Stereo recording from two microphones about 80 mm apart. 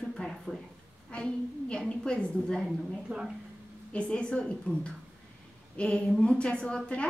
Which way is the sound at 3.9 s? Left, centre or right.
Centre.